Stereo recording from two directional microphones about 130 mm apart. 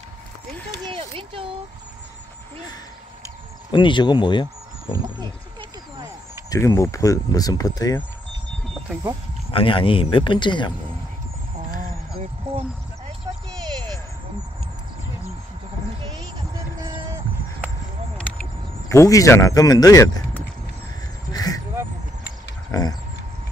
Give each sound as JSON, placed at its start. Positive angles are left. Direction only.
{"t": 0.8, "sound": "a child's voice", "side_deg": -45}
{"t": 3.7, "sound": "speech", "side_deg": 35}
{"t": 4.9, "sound": "wild animals", "side_deg": -35}
{"t": 6.5, "sound": "speech", "side_deg": 20}
{"t": 9.5, "sound": "speech", "side_deg": 45}
{"t": 18.1, "sound": "vehicle", "side_deg": 10}
{"t": 18.9, "sound": "speech", "side_deg": 25}
{"t": 21.3, "sound": "a sound", "side_deg": 30}
{"t": 22.7, "sound": "a sound", "side_deg": 30}